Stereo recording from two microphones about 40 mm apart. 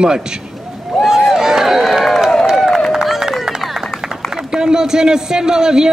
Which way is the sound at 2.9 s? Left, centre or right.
Centre.